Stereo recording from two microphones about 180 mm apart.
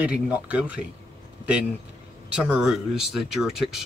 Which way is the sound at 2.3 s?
5° right (ahead or behind).